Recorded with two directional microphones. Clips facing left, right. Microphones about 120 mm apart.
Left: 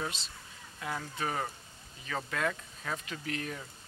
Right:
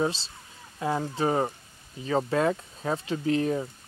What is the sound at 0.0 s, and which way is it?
Speech, 30° right (ahead or behind).